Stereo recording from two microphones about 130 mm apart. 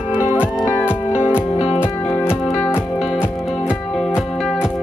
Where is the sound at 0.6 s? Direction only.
20° left (ahead or behind).